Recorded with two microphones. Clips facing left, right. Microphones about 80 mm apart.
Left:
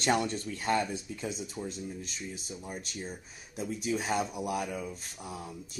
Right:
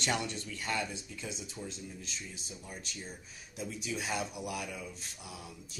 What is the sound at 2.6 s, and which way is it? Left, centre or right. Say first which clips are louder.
Speech: left 5 dB; left.